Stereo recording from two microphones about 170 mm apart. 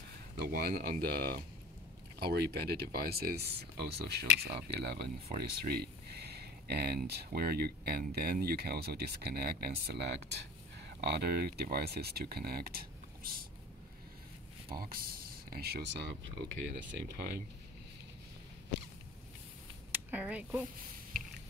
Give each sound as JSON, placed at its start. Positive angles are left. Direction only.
{"t": 0.4, "sound": "speech", "side_deg": -65}
{"t": 14.7, "sound": "speech", "side_deg": -60}
{"t": 19.9, "sound": "speech", "side_deg": -10}